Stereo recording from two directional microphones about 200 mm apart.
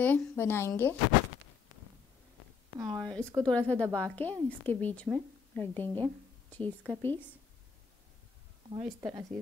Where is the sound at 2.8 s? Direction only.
15° right (ahead or behind).